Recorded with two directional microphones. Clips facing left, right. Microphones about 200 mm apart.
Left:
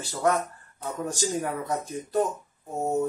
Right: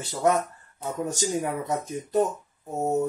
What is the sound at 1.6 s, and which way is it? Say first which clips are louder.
Speech: right 1 dB; 20° right (ahead or behind).